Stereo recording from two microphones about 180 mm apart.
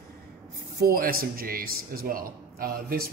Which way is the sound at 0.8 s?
55° right (ahead or behind).